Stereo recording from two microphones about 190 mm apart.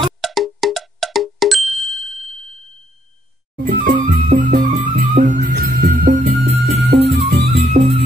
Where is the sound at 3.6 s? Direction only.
50° right (ahead or behind).